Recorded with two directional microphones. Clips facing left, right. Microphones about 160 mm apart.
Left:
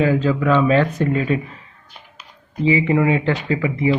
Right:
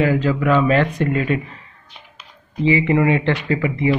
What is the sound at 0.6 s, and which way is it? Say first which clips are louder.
Speech: even; 10° left (ahead or behind).